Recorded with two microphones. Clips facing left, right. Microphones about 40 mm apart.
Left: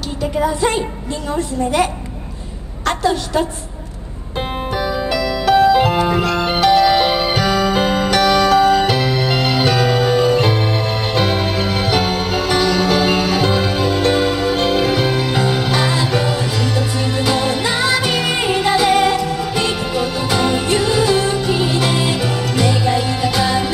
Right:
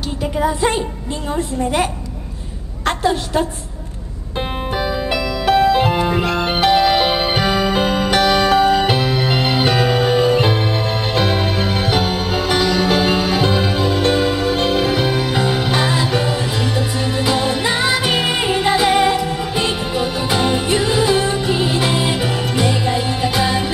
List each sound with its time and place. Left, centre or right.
0.5 s a woman's voice: right
2.8 s a woman's voice: right
4.7 s music: centre
11.6 s music: right